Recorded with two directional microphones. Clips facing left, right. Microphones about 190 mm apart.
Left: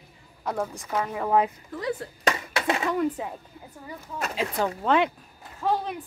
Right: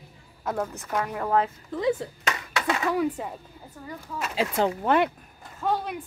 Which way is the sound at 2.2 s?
35° left (ahead or behind).